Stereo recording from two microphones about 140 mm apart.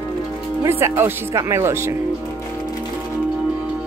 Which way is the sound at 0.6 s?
20° right (ahead or behind).